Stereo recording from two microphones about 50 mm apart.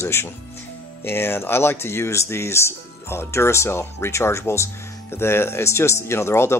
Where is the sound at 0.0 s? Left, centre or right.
Left.